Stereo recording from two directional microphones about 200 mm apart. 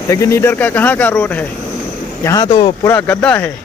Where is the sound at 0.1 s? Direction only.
15° left (ahead or behind).